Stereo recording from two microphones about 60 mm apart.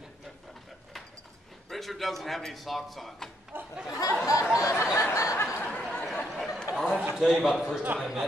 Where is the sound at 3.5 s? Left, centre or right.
Right.